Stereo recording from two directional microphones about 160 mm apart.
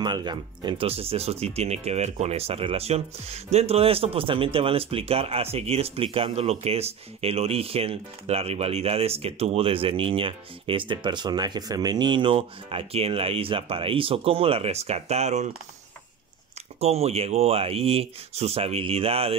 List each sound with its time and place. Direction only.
0.0 s speech: 30° right (ahead or behind); by 15.5 s 45° right (ahead or behind)
16.8 s speech: 40° right (ahead or behind)